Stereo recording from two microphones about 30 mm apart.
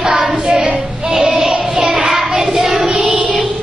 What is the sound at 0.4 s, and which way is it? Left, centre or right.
Child singing, right.